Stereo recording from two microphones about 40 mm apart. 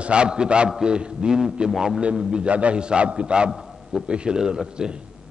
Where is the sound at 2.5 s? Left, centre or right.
Right.